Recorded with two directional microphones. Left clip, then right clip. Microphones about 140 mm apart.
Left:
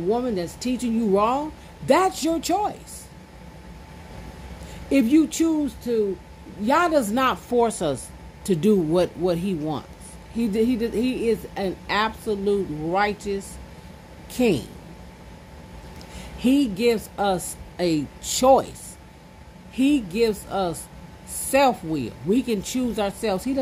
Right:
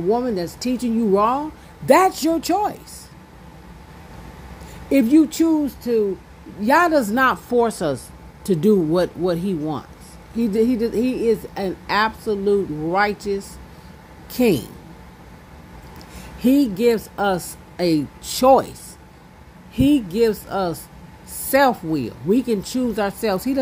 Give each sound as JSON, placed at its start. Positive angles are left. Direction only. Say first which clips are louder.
{"t": 0.1, "sound": "a woman's voice", "louder": "right 4 dB", "side_deg": -15}
{"t": 4.8, "sound": "a woman's voice", "louder": "right 4 dB", "side_deg": -5}
{"t": 6.7, "sound": "a woman's voice", "louder": "right 4 dB", "side_deg": -15}
{"t": 16.3, "sound": "a woman's voice", "louder": "right 4 dB", "side_deg": -15}